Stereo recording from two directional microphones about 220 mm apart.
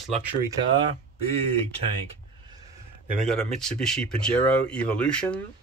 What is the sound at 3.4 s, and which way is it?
Speech, 5° left (ahead or behind).